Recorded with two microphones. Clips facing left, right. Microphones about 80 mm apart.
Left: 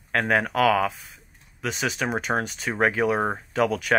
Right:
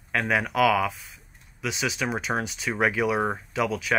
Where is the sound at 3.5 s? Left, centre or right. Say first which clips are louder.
Left 5 dB; left.